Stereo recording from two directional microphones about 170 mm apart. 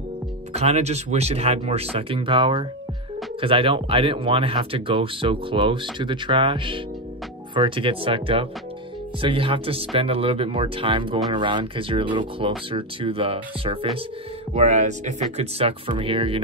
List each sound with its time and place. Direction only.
0.5 s speech: 40° right (ahead or behind)
14.5 s speech: 45° right (ahead or behind)
15.3 s speech: 30° right (ahead or behind)